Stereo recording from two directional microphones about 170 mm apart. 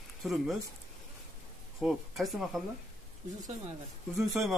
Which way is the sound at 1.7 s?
Centre (ahead or behind).